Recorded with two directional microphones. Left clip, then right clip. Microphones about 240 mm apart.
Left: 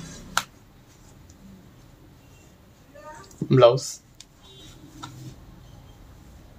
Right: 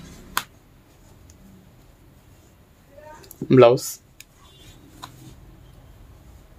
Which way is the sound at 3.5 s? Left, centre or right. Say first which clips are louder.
Right 3 dB; right.